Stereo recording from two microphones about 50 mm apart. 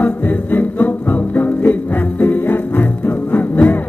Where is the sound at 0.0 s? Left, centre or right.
Left.